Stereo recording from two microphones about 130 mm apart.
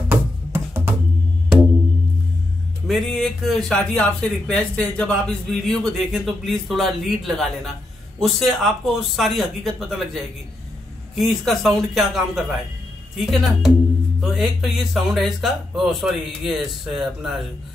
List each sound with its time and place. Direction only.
0.1 s music: 15° right (ahead or behind)
2.9 s a man's voice: centre (ahead or behind)